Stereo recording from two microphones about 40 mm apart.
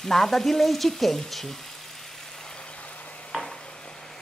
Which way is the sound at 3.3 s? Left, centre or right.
Right.